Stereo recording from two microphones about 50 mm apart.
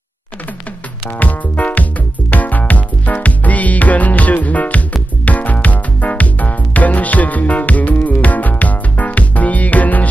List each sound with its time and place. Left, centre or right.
1.1 s music: left